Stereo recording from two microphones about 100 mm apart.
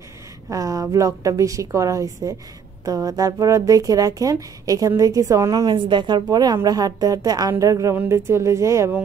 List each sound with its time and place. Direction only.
0.5 s speech: 35° right (ahead or behind)
5.7 s speech: 50° right (ahead or behind); by 8.9 s 30° right (ahead or behind)